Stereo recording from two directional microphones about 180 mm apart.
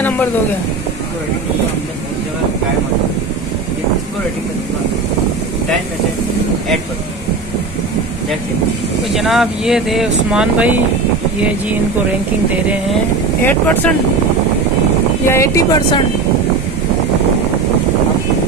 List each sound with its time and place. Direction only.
9.1 s speech: centre (ahead or behind)
13.4 s speech: 10° left (ahead or behind)
15.2 s speech: 15° left (ahead or behind)